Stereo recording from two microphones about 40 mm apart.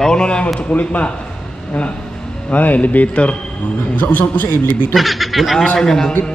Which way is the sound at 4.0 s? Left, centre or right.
Left.